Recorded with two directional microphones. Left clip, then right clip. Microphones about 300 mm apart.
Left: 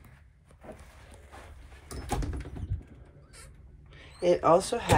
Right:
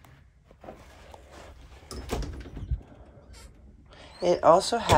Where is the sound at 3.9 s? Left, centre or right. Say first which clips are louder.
Even; centre.